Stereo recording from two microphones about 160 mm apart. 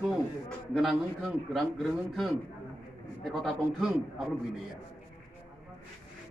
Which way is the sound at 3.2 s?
Centre (ahead or behind).